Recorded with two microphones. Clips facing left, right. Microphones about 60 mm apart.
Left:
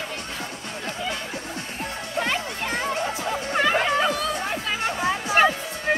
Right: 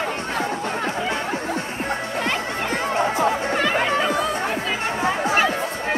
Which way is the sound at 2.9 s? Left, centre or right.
Right.